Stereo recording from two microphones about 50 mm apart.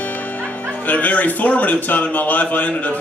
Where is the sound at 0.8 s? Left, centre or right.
Left.